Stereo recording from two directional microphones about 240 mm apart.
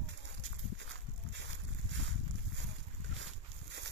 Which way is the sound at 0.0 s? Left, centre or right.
Right.